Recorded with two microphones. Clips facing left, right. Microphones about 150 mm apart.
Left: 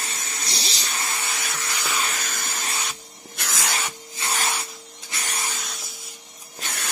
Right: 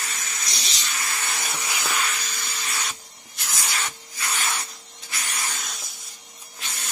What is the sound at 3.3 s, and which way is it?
Spray, 80° left.